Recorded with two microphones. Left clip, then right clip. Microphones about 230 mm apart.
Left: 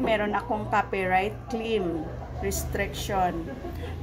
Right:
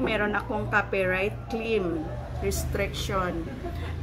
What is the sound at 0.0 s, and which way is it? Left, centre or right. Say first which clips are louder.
A woman's voice: left 1 dB; centre.